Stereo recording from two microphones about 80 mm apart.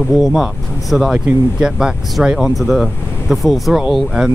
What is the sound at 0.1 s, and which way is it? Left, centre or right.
Speech, centre.